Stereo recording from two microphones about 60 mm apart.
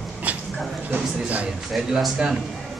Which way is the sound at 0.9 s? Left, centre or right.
Right.